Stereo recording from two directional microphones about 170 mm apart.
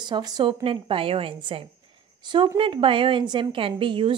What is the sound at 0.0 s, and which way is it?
A woman's voice, 25° right (ahead or behind).